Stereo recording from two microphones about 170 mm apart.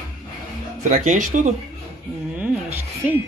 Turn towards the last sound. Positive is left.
turn(degrees=-10)  # may be behind; listen again after turning